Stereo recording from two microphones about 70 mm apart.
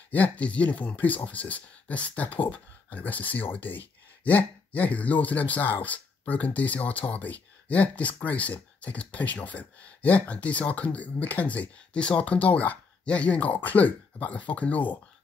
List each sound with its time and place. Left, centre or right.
0.1 s speech: left